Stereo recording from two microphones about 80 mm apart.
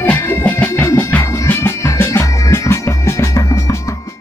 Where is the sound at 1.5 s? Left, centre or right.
Left.